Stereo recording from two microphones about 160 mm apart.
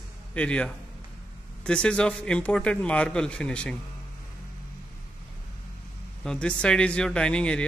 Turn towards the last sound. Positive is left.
turn(degrees=5)  # may be behind; listen again after turning